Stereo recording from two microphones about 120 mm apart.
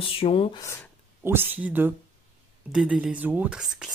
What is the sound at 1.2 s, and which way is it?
Speech, 20° right (ahead or behind).